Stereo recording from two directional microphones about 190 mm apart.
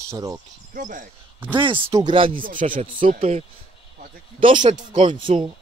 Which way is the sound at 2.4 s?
45° right (ahead or behind).